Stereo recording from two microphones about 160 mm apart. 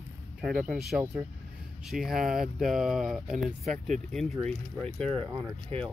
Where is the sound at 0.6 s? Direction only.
5° right (ahead or behind).